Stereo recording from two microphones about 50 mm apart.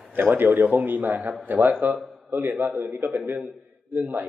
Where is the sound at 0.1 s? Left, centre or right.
Right.